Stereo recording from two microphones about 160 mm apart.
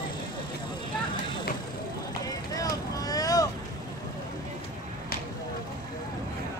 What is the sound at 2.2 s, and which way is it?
Vehicle, 25° left (ahead or behind).